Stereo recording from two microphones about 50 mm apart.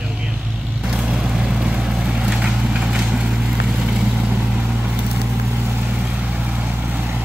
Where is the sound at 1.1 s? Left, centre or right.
Centre.